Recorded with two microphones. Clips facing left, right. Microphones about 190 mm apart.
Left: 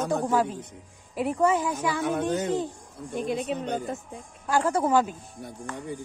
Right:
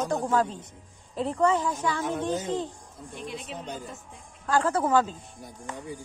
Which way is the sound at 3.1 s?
45° left (ahead or behind).